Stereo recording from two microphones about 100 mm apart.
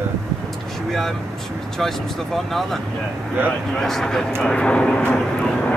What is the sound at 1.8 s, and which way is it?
Speech, 5° left (ahead or behind).